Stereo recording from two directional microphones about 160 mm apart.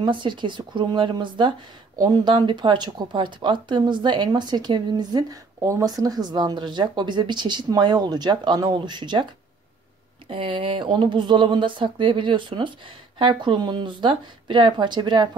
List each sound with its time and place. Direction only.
0.0 s speech: 30° right (ahead or behind)